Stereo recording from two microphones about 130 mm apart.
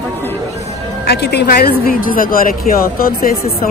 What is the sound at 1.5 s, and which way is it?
A woman's voice, 90° left.